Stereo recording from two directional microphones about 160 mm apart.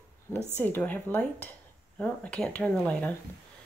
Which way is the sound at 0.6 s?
15° left (ahead or behind).